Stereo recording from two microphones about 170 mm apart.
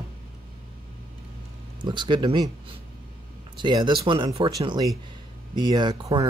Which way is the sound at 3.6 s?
25° right (ahead or behind).